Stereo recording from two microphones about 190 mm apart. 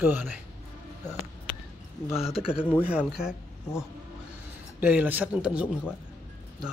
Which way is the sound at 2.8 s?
5° right (ahead or behind).